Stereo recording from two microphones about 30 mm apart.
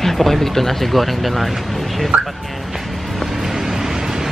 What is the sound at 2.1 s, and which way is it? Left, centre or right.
Speech, right.